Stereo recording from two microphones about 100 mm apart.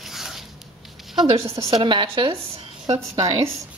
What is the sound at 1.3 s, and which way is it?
Speech, 70° right (ahead or behind).